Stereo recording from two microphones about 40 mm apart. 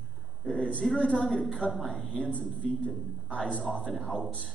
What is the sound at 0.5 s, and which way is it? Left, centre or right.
Speech, left.